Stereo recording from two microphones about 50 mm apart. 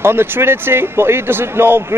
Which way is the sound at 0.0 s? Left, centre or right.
Right.